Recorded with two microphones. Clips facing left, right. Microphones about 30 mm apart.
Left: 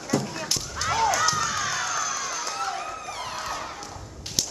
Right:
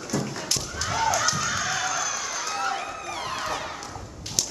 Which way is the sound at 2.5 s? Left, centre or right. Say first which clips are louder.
Right 2 dB; right.